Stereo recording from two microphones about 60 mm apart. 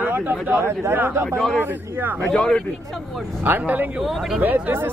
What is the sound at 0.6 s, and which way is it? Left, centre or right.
Speech, right.